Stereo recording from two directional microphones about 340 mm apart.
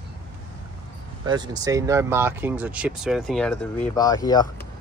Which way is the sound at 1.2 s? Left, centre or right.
Centre.